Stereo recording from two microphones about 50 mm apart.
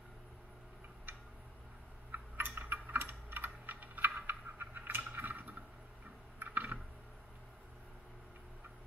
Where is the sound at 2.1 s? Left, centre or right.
Right.